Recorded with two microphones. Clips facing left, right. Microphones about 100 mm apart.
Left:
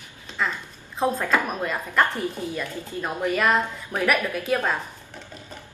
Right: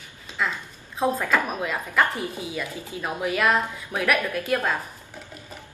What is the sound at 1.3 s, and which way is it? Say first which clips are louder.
Speech: even; centre (ahead or behind).